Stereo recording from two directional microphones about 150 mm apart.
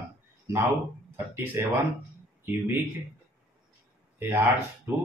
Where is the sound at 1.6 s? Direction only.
15° right (ahead or behind).